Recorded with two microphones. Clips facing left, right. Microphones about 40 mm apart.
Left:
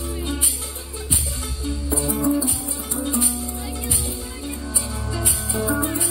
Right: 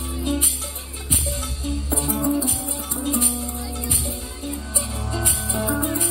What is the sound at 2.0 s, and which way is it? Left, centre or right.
Music, centre.